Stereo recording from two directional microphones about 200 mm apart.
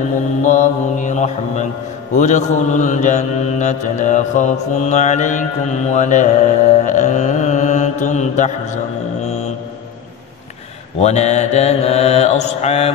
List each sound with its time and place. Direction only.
0.4 s mantra: 40° left (ahead or behind)
11.0 s mantra: 35° left (ahead or behind)